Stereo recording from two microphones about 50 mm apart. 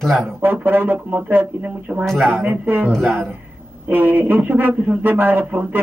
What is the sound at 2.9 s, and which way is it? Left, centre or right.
Speech, centre.